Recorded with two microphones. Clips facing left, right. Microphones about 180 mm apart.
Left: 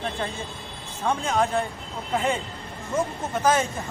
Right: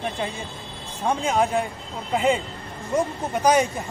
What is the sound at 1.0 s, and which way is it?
Speech, 15° right (ahead or behind).